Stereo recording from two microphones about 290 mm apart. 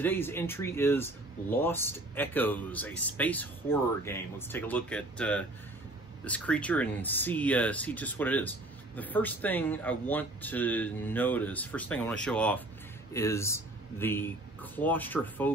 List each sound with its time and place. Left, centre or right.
0.0 s speech: centre